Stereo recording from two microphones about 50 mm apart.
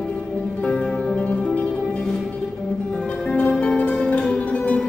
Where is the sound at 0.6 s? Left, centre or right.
Left.